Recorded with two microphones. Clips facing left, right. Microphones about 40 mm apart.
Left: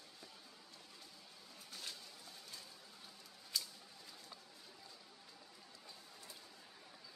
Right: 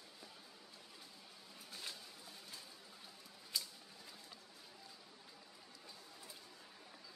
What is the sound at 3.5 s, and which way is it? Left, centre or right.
Scissors, centre.